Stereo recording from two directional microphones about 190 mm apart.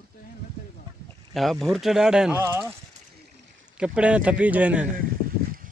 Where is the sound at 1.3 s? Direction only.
Centre (ahead or behind).